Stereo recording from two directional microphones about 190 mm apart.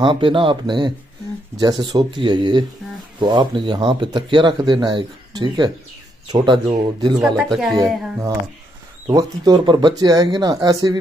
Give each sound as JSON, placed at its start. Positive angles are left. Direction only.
{"t": 0.0, "sound": "speech", "side_deg": -25}
{"t": 7.3, "sound": "speech", "side_deg": 0}
{"t": 7.7, "sound": "speech", "side_deg": -20}